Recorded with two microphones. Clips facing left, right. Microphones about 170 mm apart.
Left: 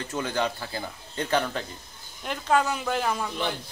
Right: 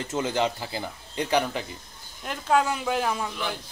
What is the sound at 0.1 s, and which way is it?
Speech, 20° right (ahead or behind).